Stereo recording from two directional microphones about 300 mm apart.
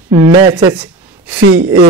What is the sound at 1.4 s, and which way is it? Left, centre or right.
Speech, right.